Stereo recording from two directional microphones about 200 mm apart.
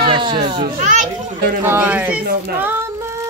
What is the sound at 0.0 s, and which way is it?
Baby cry, 25° right (ahead or behind).